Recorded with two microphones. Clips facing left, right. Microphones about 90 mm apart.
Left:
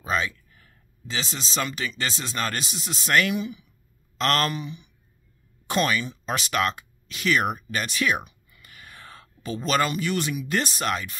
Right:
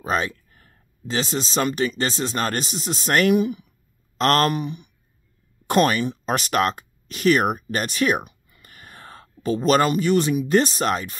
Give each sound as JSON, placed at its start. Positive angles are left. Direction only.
{"t": 0.0, "sound": "speech", "side_deg": -45}